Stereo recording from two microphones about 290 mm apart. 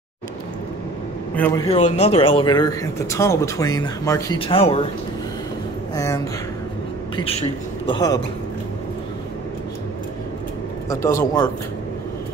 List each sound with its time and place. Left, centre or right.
1.3 s speech: centre
1.7 s speech: left
5.9 s speech: centre
10.9 s speech: centre